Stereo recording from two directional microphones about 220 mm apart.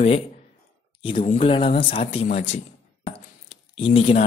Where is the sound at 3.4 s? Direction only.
25° left (ahead or behind).